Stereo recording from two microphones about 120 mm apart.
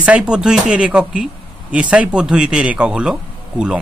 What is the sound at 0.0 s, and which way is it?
Speech, 10° right (ahead or behind).